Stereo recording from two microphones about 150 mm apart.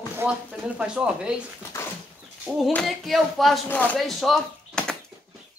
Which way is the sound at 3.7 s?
10° left (ahead or behind).